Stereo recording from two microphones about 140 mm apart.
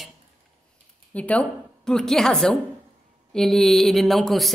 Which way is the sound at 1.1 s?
10° left (ahead or behind).